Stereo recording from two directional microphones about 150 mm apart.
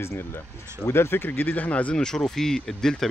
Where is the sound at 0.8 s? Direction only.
15° left (ahead or behind).